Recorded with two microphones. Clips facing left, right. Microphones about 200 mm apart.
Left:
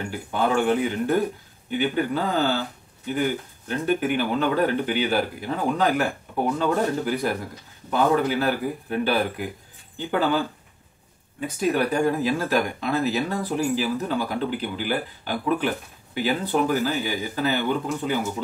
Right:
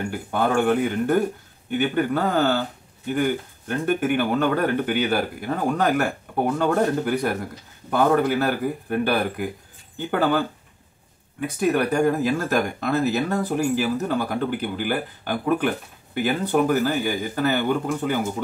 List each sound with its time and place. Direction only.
0.0 s speech: 50° right (ahead or behind)